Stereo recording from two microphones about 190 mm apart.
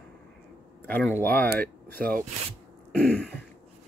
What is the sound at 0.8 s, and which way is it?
Speech, 10° left (ahead or behind).